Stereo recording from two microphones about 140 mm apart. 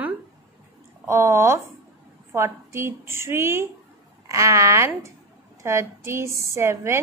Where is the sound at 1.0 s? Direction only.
20° right (ahead or behind).